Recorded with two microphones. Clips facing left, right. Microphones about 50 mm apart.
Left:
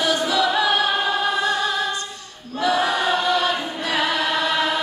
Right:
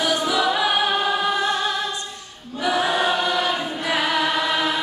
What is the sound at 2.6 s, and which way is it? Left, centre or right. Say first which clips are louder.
Choir: left 1 dB; centre.